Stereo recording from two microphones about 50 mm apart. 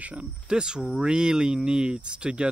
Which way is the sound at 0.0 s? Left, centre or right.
Right.